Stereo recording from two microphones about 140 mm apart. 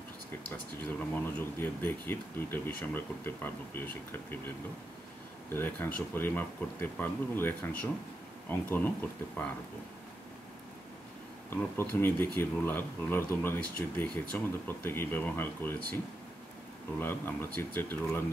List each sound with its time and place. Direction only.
0.5 s speech: 15° left (ahead or behind)
5.5 s speech: 15° left (ahead or behind)
11.5 s speech: 15° left (ahead or behind)
17.0 s speech: 15° left (ahead or behind)